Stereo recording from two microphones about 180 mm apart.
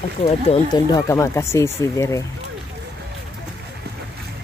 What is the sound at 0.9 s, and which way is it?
Speech, 15° left (ahead or behind).